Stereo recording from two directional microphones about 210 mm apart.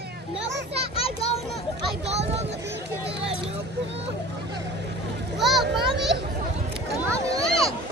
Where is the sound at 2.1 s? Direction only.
30° right (ahead or behind).